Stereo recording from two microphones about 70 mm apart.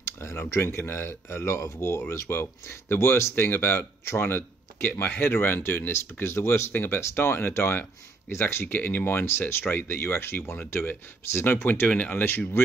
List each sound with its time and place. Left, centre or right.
0.0 s speech: left
11.9 s speech: centre
12.3 s speech: left